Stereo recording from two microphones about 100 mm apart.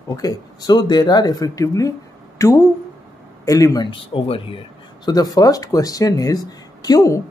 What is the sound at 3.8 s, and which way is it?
Speech, 60° left (ahead or behind).